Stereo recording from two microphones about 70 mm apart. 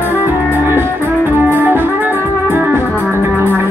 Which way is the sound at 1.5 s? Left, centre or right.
Right.